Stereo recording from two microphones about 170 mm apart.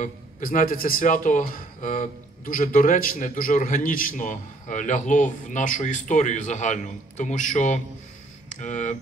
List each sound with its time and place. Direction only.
0.0 s a man's voice: 50° left (ahead or behind)